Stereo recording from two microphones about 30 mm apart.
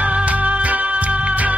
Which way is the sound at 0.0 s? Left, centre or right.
Right.